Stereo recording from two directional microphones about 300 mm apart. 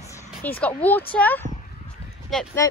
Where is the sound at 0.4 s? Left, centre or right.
Centre.